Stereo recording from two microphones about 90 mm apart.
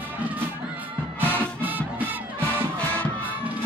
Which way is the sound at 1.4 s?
20° right (ahead or behind).